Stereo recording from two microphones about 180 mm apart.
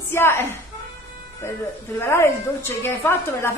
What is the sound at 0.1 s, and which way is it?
Speech, 10° left (ahead or behind).